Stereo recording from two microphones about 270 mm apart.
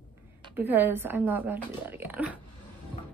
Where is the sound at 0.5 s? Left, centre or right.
Centre.